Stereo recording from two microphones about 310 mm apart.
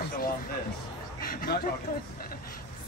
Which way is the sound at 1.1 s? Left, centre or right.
Left.